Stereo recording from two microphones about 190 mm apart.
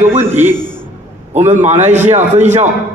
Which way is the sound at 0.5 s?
5° left (ahead or behind).